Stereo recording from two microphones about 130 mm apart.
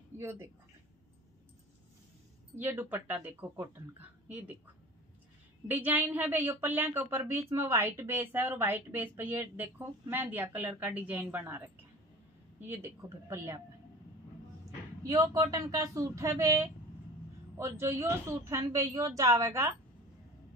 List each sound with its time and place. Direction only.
0.2 s a woman's voice: 20° right (ahead or behind)
2.5 s a woman's voice: 15° right (ahead or behind)
5.7 s a woman's voice: 15° right (ahead or behind)
15.0 s a woman's voice: 30° right (ahead or behind)